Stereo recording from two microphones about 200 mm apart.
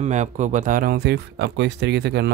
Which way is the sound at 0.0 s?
35° right (ahead or behind).